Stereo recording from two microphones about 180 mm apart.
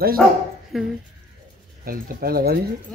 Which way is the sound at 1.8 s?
55° right (ahead or behind).